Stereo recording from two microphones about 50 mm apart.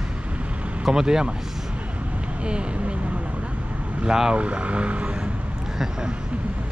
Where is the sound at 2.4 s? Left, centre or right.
Right.